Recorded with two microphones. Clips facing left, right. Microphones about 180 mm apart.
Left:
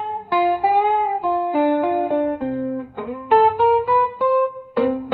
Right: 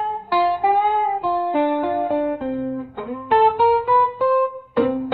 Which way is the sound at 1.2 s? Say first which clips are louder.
Even; centre (ahead or behind).